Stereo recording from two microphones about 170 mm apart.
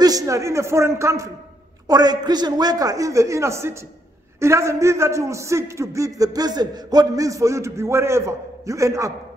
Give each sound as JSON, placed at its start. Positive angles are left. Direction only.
{"t": 0.0, "sound": "a man's voice", "side_deg": -20}